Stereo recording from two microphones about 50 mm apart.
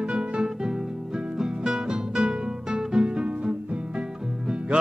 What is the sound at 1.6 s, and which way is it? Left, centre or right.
Music, right.